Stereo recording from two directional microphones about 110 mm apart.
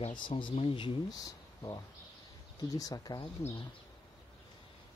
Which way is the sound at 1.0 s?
35° left (ahead or behind).